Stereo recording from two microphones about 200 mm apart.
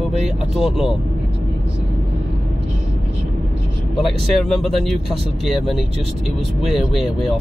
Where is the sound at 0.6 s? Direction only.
Centre (ahead or behind).